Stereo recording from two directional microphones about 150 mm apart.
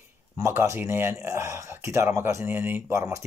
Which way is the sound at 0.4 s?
15° right (ahead or behind).